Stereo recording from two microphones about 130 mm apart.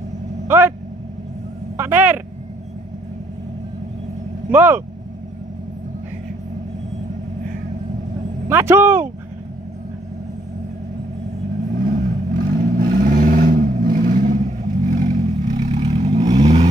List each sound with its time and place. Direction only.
0.5 s vehicle: 15° right (ahead or behind)
1.8 s a sound: 15° right (ahead or behind)
4.5 s speech: 15° right (ahead or behind)
8.5 s speech: 20° right (ahead or behind)
11.7 s vehicle: 90° right; by 15.5 s 70° right (ahead or behind)
15.5 s vehicle: 50° right (ahead or behind)
16.2 s vehicle: 35° right (ahead or behind)